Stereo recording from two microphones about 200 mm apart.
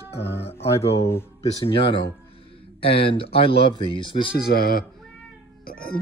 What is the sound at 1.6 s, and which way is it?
Speech, 25° left (ahead or behind).